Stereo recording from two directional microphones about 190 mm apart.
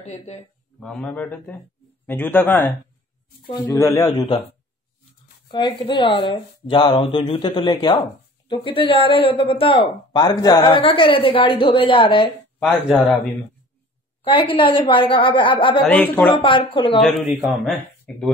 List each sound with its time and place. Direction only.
0.0 s speech: 35° left (ahead or behind)
0.7 s a man's voice: 5° left (ahead or behind); by 4.4 s 20° left (ahead or behind)
5.5 s speech: 25° left (ahead or behind)
12.5 s speech: 5° left (ahead or behind)
14.2 s speech: 25° left (ahead or behind)
15.8 s a man's voice: 10° left (ahead or behind)
16.3 s speech: 25° left (ahead or behind)
17.0 s speech: centre (ahead or behind)